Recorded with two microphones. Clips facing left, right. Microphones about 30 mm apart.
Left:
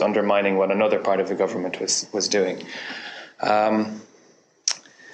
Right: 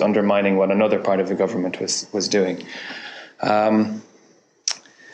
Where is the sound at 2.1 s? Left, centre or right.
Centre.